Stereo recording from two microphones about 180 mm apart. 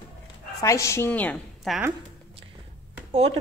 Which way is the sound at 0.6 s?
15° left (ahead or behind).